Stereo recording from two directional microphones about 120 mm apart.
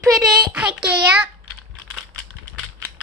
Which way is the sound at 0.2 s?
5° right (ahead or behind).